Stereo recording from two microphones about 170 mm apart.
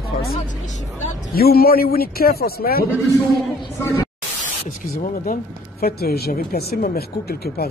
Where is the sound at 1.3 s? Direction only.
65° left (ahead or behind).